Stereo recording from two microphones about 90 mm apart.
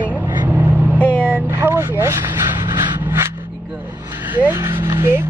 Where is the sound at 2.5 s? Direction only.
55° right (ahead or behind).